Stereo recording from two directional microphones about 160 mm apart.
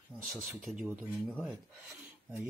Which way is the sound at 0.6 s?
5° right (ahead or behind).